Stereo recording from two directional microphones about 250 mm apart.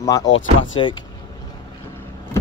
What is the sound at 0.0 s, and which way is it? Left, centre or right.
Speech, centre.